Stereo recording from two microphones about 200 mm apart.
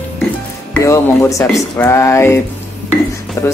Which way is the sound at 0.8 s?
15° left (ahead or behind).